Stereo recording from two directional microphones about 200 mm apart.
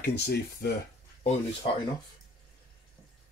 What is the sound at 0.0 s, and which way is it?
Speech, 55° left (ahead or behind).